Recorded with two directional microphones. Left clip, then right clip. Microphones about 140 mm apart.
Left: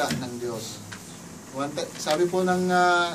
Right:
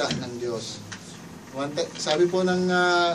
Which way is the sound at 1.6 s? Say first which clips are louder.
Right 2 dB; 10° right (ahead or behind).